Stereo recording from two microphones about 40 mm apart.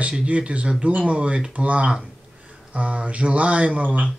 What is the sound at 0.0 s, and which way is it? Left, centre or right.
Speech, right.